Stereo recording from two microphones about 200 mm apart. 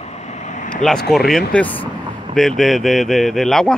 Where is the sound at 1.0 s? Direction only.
Centre (ahead or behind).